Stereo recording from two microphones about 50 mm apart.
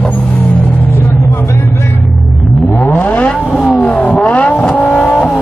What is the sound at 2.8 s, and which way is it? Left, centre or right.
Vehicle, left.